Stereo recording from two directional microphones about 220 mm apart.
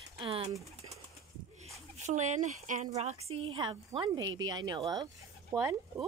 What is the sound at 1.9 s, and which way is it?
A woman's voice, 30° right (ahead or behind).